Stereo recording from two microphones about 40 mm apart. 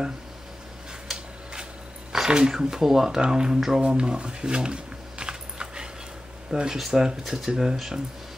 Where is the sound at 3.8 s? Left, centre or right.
Right.